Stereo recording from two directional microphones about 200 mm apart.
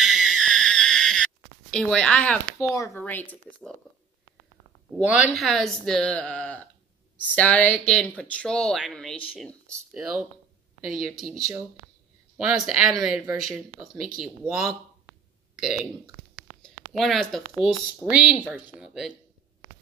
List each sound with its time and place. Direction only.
0.0 s a sound: centre (ahead or behind)
2.7 s speech: 15° left (ahead or behind)
4.9 s speech: centre (ahead or behind)
11.3 s speech: 15° right (ahead or behind)
12.4 s speech: 5° right (ahead or behind)
16.6 s speech: centre (ahead or behind)